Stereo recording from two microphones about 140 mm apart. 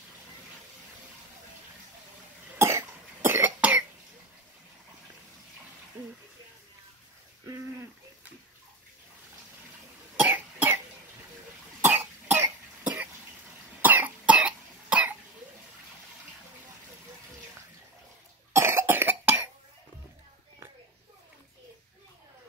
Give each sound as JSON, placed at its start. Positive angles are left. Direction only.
{"t": 2.6, "sound": "cough", "side_deg": -15}
{"t": 10.2, "sound": "cough", "side_deg": -15}
{"t": 11.8, "sound": "cough", "side_deg": -15}
{"t": 18.5, "sound": "cough", "side_deg": -20}